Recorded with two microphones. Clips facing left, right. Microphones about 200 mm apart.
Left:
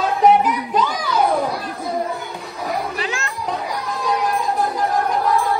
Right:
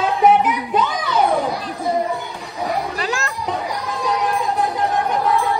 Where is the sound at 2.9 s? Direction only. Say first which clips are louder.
Right 2 dB; 35° right (ahead or behind).